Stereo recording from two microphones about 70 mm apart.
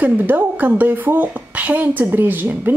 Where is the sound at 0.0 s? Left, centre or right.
Right.